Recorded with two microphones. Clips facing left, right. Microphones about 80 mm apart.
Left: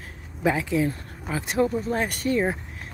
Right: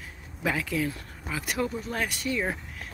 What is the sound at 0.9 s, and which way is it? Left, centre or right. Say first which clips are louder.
Speech: left 5 dB; left.